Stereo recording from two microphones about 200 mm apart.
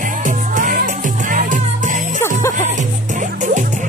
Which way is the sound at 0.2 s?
40° right (ahead or behind).